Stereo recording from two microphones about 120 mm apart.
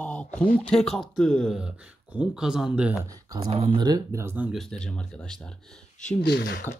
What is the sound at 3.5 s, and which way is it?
Speech, 50° right (ahead or behind).